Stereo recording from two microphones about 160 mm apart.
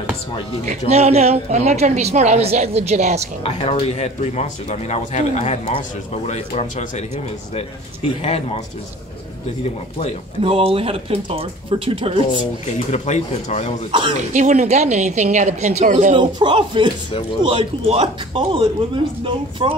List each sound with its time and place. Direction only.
0.7 s a woman's voice: 45° right (ahead or behind)
3.4 s a man's voice: 35° left (ahead or behind)
10.4 s speech: 35° right (ahead or behind)
12.7 s speech: 50° left (ahead or behind)
14.3 s a woman's voice: 45° right (ahead or behind)
16.2 s speech: 30° right (ahead or behind)